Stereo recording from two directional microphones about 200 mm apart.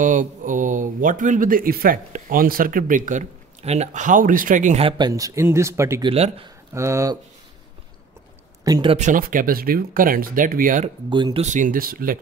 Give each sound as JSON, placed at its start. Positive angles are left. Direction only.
{"t": 0.0, "sound": "speech", "side_deg": -40}
{"t": 6.1, "sound": "speech", "side_deg": -30}
{"t": 6.7, "sound": "speech", "side_deg": -15}
{"t": 8.6, "sound": "speech", "side_deg": -20}
{"t": 8.9, "sound": "speech", "side_deg": -40}
{"t": 11.1, "sound": "speech", "side_deg": -25}
{"t": 11.4, "sound": "speech", "side_deg": -40}